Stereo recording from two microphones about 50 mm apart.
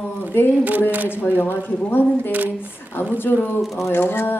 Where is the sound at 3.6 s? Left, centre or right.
Centre.